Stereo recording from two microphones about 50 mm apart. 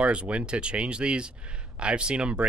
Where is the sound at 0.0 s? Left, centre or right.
Right.